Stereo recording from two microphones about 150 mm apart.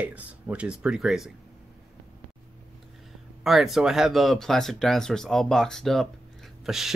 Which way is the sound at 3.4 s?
Centre (ahead or behind).